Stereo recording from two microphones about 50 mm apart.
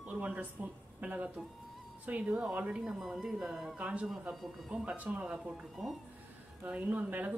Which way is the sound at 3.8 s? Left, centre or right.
Right.